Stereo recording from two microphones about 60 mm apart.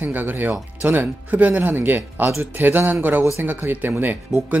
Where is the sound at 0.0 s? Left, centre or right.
Right.